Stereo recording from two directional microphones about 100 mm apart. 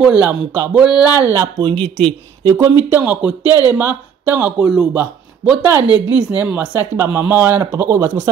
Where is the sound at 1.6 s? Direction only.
60° right (ahead or behind).